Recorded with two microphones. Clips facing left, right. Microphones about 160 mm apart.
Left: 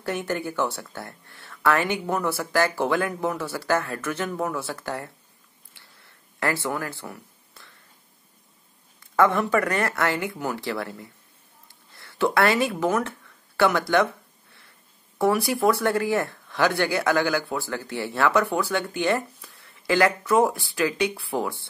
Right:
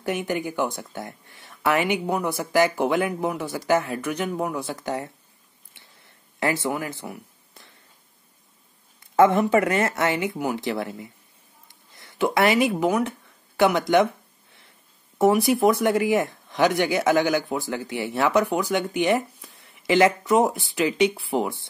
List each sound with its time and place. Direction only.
0.0 s speech: 15° right (ahead or behind)
5.7 s a sound: 20° right (ahead or behind)
9.1 s speech: 20° right (ahead or behind)
15.1 s speech: 20° right (ahead or behind)